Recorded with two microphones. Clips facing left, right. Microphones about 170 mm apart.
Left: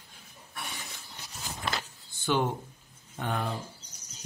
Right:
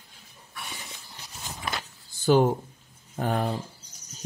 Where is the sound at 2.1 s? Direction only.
40° right (ahead or behind).